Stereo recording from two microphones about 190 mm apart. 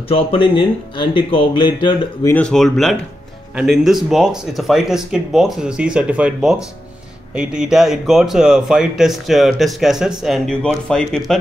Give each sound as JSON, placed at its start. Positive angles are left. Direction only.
{"t": 0.1, "sound": "speech", "side_deg": 30}
{"t": 2.2, "sound": "speech", "side_deg": 5}